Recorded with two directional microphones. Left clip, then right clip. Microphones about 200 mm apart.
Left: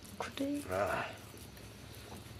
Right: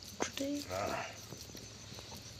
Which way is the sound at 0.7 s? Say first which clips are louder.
Left 3 dB; 50° left (ahead or behind).